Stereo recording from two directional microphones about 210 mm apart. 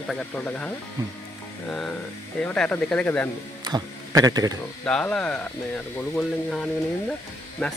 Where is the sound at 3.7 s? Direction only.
20° right (ahead or behind).